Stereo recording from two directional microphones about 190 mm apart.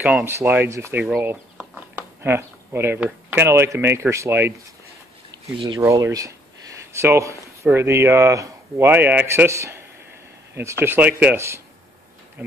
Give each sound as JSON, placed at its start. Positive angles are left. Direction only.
{"t": 0.0, "sound": "speech", "side_deg": -10}
{"t": 5.8, "sound": "speech", "side_deg": -15}